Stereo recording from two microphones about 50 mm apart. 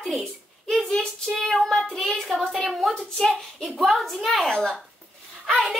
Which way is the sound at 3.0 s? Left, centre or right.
Centre.